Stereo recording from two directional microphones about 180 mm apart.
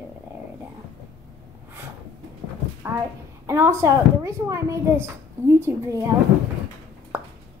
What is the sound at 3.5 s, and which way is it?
A woman's voice, 15° right (ahead or behind).